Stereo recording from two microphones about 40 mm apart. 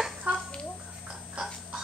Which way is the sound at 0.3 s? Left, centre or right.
Right.